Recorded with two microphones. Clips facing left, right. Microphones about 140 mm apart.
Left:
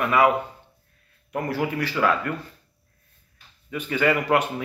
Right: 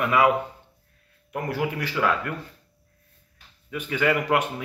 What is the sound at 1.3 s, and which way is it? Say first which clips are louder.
Speech: left 1 dB; 10° right (ahead or behind).